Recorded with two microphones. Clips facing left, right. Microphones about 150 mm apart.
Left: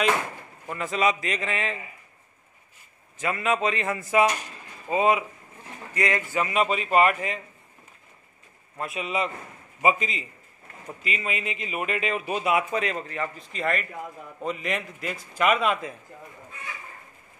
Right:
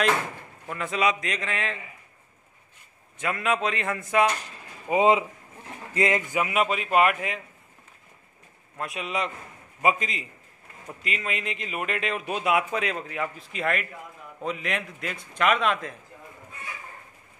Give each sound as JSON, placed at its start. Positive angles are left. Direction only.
{"t": 0.7, "sound": "speech", "side_deg": 0}
{"t": 3.2, "sound": "speech", "side_deg": 0}
{"t": 4.8, "sound": "speech", "side_deg": -20}
{"t": 8.7, "sound": "speech", "side_deg": 0}